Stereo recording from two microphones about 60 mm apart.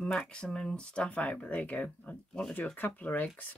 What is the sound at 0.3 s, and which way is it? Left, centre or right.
Speech, centre.